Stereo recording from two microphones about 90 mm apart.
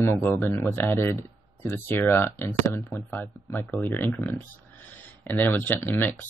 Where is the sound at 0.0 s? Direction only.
30° left (ahead or behind).